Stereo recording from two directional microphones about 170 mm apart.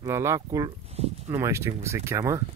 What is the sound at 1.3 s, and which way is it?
Speech, 15° right (ahead or behind).